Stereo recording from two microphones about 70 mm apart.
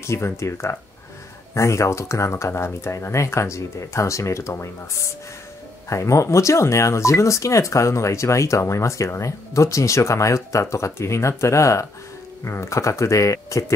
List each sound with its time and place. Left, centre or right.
0.0 s speech: left